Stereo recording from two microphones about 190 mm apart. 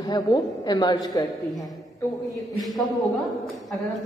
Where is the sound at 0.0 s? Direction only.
20° left (ahead or behind).